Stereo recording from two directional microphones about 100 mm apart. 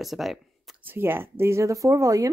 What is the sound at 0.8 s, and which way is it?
Speech, 20° right (ahead or behind).